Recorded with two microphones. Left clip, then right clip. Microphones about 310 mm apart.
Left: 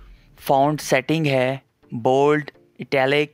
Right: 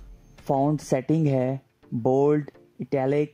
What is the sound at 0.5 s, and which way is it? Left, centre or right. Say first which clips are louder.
Speech: left 6 dB; left.